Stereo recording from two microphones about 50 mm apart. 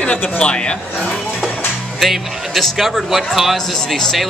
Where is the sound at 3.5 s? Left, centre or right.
Centre.